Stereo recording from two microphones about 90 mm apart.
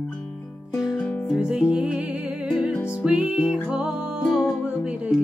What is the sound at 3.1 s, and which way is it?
Music, 10° right (ahead or behind).